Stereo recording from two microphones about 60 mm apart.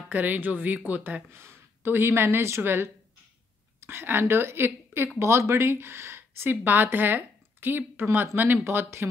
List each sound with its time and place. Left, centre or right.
0.1 s speech: right
1.3 s a woman's voice: right
5.2 s speech: right